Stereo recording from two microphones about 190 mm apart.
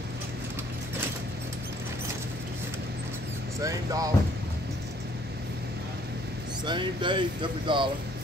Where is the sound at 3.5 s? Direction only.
15° right (ahead or behind).